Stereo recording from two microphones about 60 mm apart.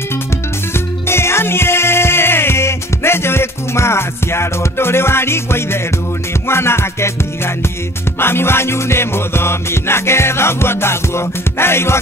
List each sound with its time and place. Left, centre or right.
0.7 s music: left